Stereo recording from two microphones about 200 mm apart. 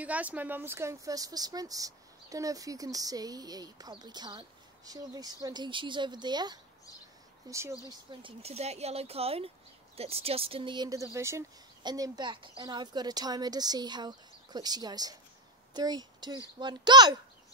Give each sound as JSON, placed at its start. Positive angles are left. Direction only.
{"t": 0.0, "sound": "speech", "side_deg": -5}